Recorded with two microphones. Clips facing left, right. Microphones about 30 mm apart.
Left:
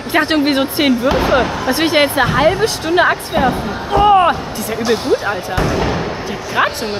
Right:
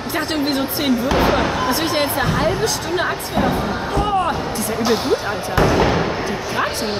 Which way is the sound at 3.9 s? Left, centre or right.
Left.